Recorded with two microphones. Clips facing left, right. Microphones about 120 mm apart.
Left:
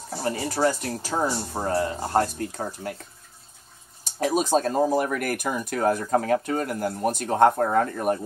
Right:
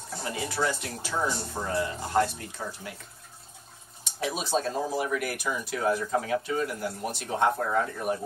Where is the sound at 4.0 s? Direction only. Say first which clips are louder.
Left 8 dB; 45° left (ahead or behind).